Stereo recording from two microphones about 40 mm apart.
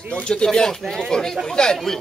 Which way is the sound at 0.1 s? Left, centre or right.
Left.